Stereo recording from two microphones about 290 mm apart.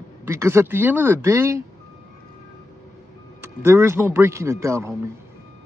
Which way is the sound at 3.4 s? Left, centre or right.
Centre.